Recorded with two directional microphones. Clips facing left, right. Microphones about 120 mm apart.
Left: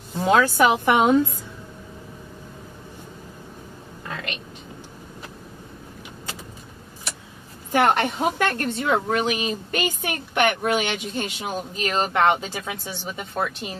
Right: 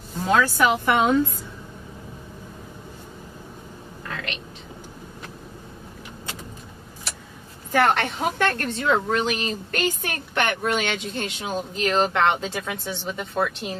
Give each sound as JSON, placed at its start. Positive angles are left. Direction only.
{"t": 0.4, "sound": "a woman's voice", "side_deg": 15}
{"t": 4.1, "sound": "whispering", "side_deg": 10}
{"t": 7.7, "sound": "a woman's voice", "side_deg": 15}